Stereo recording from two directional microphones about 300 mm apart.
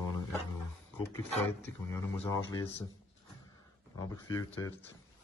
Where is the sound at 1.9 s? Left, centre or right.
Centre.